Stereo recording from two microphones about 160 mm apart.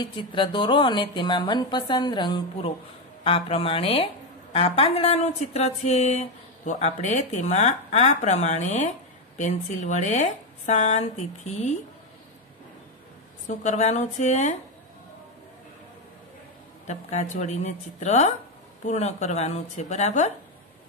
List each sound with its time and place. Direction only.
0.0 s a woman's voice: 30° left (ahead or behind); by 11.7 s 45° left (ahead or behind)
13.5 s a woman's voice: 45° left (ahead or behind)
16.8 s a woman's voice: 45° left (ahead or behind)